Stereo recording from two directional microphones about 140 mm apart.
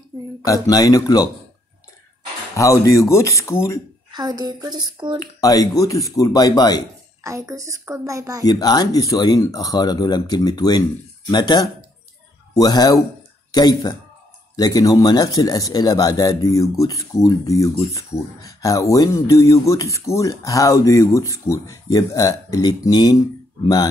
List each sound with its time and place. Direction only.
0.4 s a man's voice: 25° left (ahead or behind)
2.5 s a man's voice: 25° left (ahead or behind)
4.1 s a woman's voice: 30° right (ahead or behind)
5.4 s a man's voice: 25° left (ahead or behind)
7.2 s a woman's voice: 20° right (ahead or behind)
8.5 s a man's voice: 30° left (ahead or behind)